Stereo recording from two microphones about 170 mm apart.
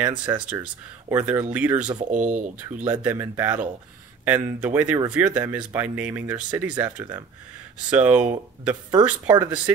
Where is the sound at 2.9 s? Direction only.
10° right (ahead or behind).